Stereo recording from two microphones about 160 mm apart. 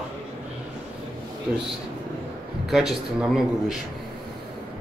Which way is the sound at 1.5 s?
5° right (ahead or behind).